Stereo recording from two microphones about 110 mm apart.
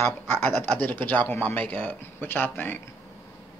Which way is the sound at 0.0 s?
20° left (ahead or behind).